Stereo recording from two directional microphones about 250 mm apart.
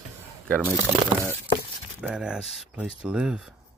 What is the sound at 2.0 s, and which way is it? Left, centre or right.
Speech, centre.